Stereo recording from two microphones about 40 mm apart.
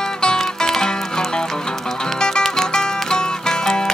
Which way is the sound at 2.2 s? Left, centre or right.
Centre.